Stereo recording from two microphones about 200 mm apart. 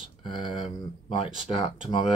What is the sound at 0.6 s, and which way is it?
Speech, 25° left (ahead or behind).